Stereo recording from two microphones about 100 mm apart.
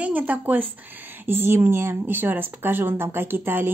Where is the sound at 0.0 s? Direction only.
15° right (ahead or behind).